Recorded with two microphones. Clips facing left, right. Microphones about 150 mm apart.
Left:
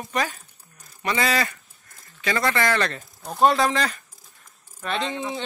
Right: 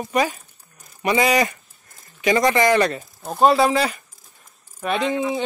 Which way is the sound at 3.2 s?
5° right (ahead or behind).